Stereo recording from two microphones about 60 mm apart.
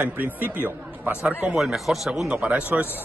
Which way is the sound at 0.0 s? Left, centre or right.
Right.